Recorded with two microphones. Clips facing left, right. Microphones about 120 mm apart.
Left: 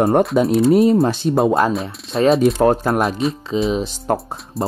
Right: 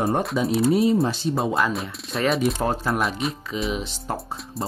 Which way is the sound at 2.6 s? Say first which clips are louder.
Left 9 dB; 60° left (ahead or behind).